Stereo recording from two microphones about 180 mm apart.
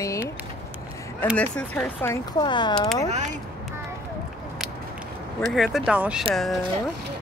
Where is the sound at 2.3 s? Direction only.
25° left (ahead or behind).